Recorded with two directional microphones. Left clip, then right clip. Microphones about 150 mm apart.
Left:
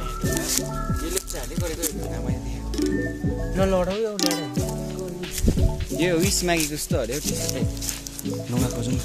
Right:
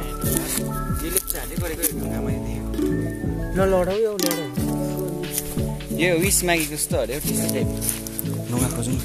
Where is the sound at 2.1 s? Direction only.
20° left (ahead or behind).